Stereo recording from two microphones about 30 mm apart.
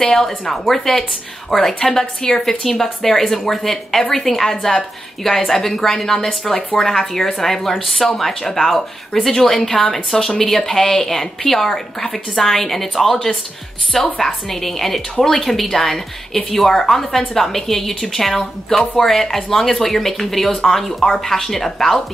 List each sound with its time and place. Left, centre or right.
0.0 s speech: centre
14.2 s speech: centre